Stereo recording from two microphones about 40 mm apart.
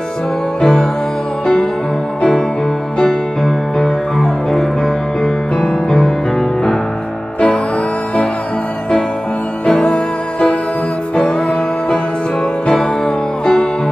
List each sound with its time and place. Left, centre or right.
0.6 s music: centre
3.0 s music: centre
5.6 s music: left
9.8 s music: left
12.7 s music: centre